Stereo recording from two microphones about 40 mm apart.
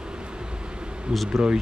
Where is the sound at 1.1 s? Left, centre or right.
Centre.